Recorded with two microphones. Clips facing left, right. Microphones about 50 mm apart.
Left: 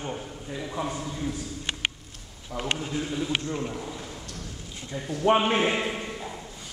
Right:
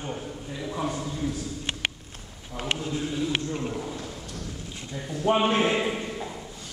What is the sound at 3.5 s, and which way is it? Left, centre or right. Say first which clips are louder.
Speech: right 1 dB; centre.